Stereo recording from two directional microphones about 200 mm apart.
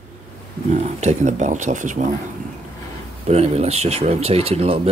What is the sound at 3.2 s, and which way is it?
Speech, 30° right (ahead or behind).